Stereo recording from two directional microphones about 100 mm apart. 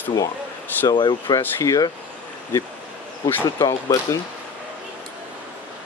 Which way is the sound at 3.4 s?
40° left (ahead or behind).